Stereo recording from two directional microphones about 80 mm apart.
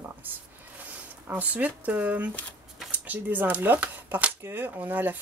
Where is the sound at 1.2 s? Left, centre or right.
Right.